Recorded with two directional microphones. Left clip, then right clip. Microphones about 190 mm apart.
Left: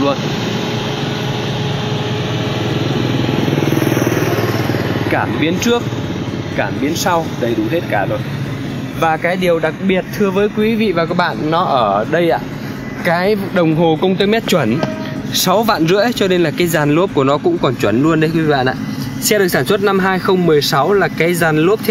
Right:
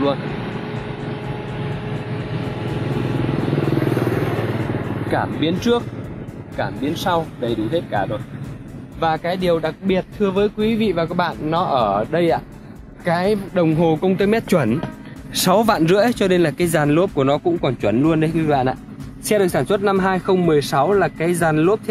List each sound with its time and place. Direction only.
5.1 s speech: 15° right (ahead or behind)
9.0 s speech: 10° right (ahead or behind)
14.1 s speech: 25° right (ahead or behind); by 21.7 s 5° right (ahead or behind)